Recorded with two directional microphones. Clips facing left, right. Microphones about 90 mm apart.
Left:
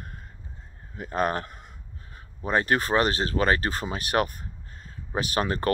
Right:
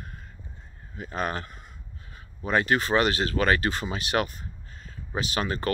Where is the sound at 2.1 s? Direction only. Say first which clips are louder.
Even; 40° left (ahead or behind).